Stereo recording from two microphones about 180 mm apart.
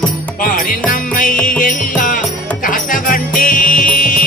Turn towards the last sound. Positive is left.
turn(degrees=50)  # may be behind; listen again after turning